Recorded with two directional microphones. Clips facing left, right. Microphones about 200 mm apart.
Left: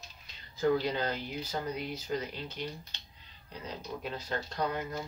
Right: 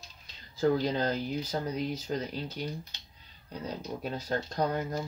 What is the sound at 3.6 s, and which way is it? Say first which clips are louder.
Speech: right 3 dB; 40° right (ahead or behind).